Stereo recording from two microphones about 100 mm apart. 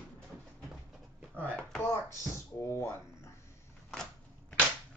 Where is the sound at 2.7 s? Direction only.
25° left (ahead or behind).